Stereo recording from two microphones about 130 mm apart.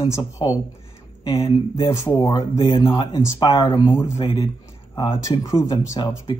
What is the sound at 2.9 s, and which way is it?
A man's voice, 35° left (ahead or behind).